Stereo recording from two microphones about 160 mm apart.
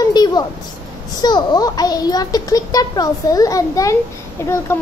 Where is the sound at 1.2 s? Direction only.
25° left (ahead or behind).